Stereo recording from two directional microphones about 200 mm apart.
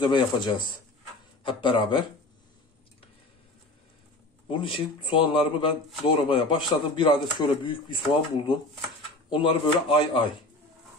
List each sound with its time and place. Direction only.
0.0 s speech: 25° left (ahead or behind)
4.5 s speech: 25° left (ahead or behind)